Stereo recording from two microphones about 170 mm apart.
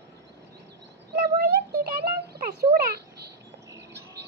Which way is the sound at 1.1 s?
65° right (ahead or behind).